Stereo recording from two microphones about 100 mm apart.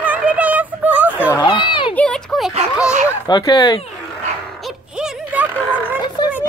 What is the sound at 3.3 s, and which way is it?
Speech, 45° left (ahead or behind).